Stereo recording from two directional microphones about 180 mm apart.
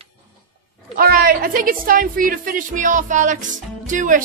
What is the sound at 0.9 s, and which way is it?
A woman's voice, 55° right (ahead or behind).